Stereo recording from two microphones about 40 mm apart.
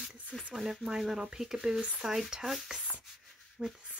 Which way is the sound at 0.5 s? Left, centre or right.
Centre.